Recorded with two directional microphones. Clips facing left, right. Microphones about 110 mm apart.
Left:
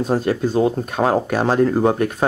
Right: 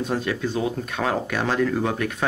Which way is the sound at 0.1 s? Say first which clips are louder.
Left 9 dB; 40° left (ahead or behind).